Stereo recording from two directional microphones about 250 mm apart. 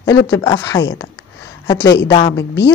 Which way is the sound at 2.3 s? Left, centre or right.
Left.